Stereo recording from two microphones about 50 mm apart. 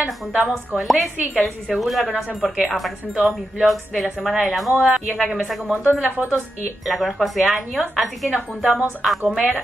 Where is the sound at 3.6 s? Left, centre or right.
Centre.